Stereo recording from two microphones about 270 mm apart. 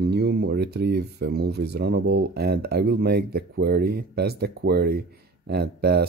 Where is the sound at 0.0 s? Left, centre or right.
Right.